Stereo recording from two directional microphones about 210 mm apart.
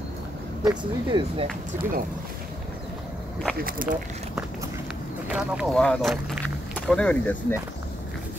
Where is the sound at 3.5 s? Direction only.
45° right (ahead or behind).